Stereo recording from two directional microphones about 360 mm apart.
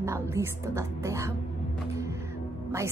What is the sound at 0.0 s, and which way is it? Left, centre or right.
A woman's voice, centre.